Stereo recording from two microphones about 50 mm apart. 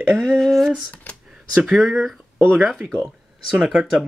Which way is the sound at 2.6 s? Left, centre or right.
Centre.